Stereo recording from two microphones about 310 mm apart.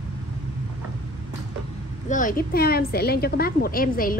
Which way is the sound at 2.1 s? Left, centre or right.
Left.